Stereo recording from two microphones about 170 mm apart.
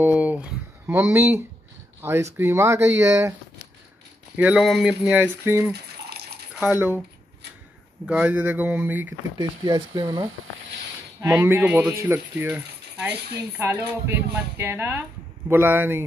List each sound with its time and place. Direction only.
0.0 s speech: 10° right (ahead or behind)
4.4 s speech: 5° right (ahead or behind)
5.7 s a sound: 70° right (ahead or behind)
6.5 s speech: 10° right (ahead or behind)
8.1 s speech: 10° right (ahead or behind)
9.4 s speech: 25° right (ahead or behind)